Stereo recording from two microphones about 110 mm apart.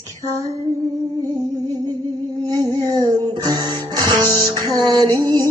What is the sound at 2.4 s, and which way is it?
Music, 35° right (ahead or behind).